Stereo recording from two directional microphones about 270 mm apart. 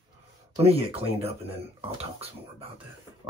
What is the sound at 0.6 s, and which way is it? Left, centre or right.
Speech, right.